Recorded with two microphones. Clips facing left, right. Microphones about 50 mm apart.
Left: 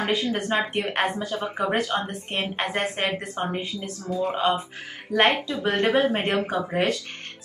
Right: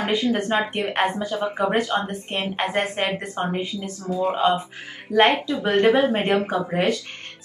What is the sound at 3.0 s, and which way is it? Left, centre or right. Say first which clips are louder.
Speech: right 2 dB; right.